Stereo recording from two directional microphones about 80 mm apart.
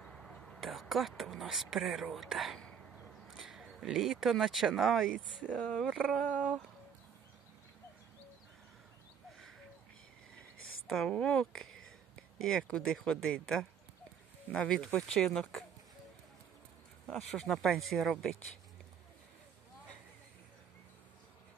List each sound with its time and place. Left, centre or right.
0.0 s speech: centre
5.4 s speech: centre
5.9 s a sound: centre
10.9 s speech: centre
17.2 s speech: centre